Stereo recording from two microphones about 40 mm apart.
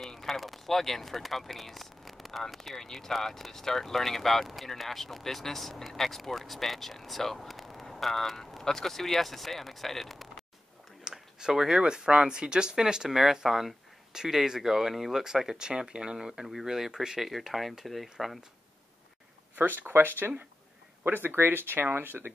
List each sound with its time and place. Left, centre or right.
0.0 s speech: centre
11.1 s a sound: centre
11.8 s speech: right; by 18.1 s centre
19.5 s speech: right